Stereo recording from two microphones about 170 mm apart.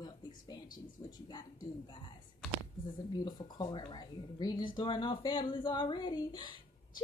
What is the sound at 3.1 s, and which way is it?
Speech, 25° left (ahead or behind).